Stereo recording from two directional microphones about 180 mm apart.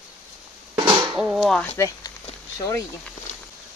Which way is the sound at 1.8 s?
20° left (ahead or behind).